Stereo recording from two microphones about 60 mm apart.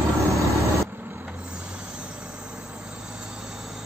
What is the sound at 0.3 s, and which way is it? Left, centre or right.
Vehicle, right.